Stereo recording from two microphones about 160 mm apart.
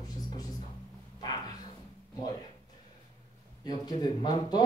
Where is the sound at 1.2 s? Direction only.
25° left (ahead or behind).